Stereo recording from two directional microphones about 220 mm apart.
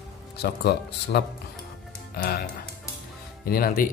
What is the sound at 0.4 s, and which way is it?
Speech, 50° left (ahead or behind).